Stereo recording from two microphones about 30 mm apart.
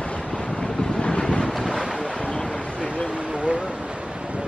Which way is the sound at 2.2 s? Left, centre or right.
Left.